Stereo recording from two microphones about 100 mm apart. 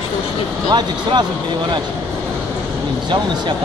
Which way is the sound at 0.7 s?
45° right (ahead or behind).